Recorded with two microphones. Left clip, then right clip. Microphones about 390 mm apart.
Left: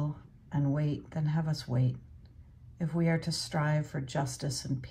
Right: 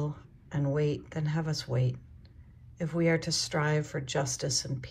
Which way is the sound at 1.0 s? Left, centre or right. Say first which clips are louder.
Right 2 dB; right.